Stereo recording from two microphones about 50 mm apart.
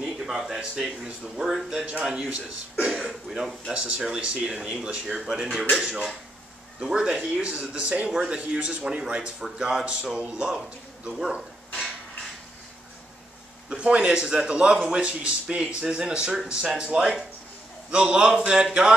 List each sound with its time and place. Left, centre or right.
0.0 s speech: centre
13.7 s speech: centre